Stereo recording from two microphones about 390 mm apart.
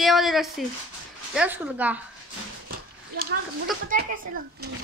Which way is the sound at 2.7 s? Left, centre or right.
Right.